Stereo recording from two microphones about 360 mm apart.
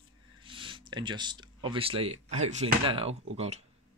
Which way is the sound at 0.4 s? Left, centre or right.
Centre.